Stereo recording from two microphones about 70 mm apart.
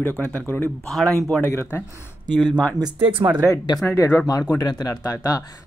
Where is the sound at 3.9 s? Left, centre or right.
Left.